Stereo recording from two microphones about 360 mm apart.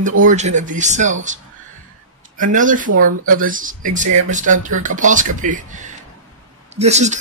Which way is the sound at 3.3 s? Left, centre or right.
Right.